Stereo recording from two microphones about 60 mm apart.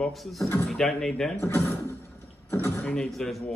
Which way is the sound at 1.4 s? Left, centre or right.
Left.